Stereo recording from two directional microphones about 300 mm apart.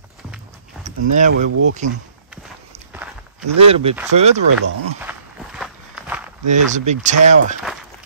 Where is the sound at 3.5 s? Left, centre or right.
Centre.